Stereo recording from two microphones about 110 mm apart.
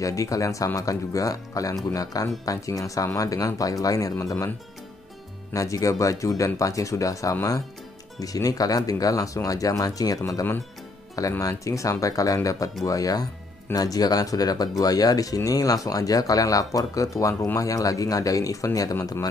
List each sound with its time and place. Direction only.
0.0 s speech: 30° left (ahead or behind)
5.5 s speech: 30° left (ahead or behind)